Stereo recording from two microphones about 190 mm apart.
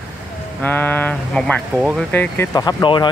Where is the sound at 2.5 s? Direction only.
20° left (ahead or behind).